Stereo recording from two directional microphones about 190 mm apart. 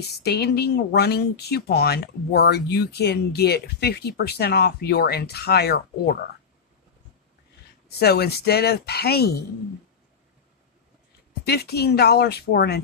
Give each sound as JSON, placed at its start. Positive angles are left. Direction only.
{"t": 0.2, "sound": "speech", "side_deg": 60}
{"t": 8.0, "sound": "speech", "side_deg": 55}
{"t": 11.4, "sound": "speech", "side_deg": 55}